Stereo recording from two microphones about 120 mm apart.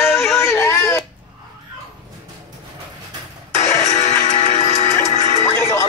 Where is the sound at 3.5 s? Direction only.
80° left.